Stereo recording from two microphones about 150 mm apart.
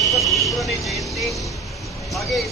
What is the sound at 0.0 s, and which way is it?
Vehicle, centre (ahead or behind).